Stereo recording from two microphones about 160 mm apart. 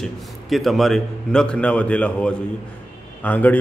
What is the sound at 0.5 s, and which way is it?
A man's voice, centre (ahead or behind).